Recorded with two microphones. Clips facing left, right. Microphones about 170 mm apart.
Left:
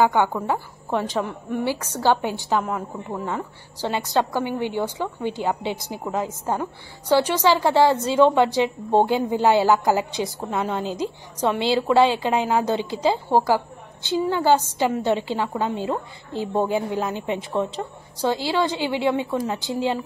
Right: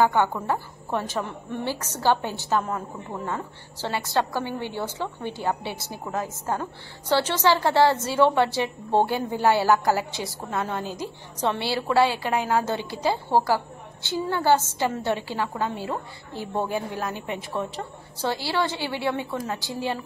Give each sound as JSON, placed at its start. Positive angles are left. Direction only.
{"t": 0.0, "sound": "a woman's voice", "side_deg": 10}